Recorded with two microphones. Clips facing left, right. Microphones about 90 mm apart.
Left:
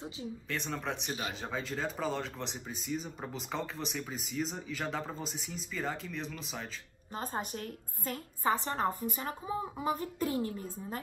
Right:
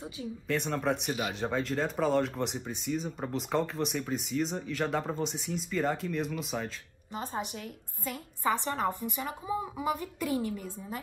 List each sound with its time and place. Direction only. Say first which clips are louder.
0.5 s speech: right 8 dB; centre (ahead or behind)
7.2 s a woman's voice: right 1 dB; 40° left (ahead or behind)